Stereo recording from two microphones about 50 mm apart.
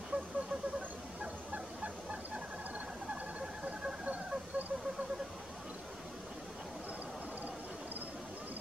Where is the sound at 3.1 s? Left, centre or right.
Right.